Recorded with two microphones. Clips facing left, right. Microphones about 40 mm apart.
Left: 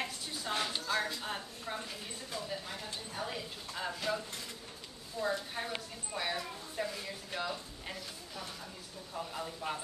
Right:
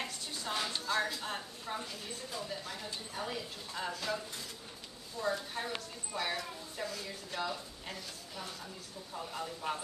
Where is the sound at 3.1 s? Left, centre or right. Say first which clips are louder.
Even; centre.